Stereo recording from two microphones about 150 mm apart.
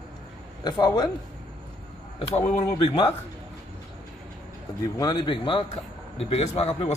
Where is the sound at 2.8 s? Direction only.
40° left (ahead or behind).